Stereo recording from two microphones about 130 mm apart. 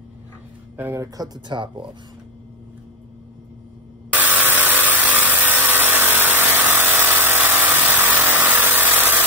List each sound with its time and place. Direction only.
0.7 s speech: 15° right (ahead or behind)
1.0 s speech: 30° right (ahead or behind)
4.1 s a sound: 15° right (ahead or behind)